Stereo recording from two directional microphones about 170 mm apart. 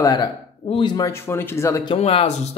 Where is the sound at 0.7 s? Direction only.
25° left (ahead or behind).